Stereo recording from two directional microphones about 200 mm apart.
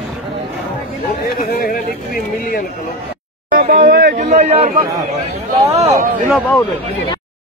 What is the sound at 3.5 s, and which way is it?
Chatter, 45° right (ahead or behind).